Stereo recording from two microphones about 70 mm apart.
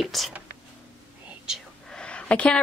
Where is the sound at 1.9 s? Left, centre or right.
Centre.